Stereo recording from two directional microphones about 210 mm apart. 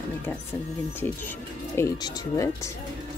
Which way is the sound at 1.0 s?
10° left (ahead or behind).